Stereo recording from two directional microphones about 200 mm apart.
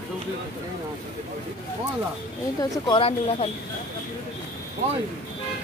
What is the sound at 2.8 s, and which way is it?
Speech, 25° left (ahead or behind).